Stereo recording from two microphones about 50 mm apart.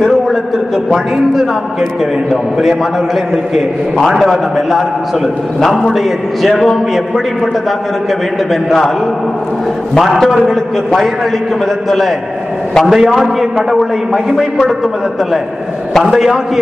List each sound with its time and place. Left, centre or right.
0.8 s a man's voice: centre
4.0 s a man's voice: centre
9.9 s a man's voice: centre
12.8 s a man's voice: centre
16.0 s a man's voice: centre